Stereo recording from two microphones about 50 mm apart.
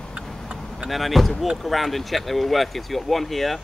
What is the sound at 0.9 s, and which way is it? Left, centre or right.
Speech, centre.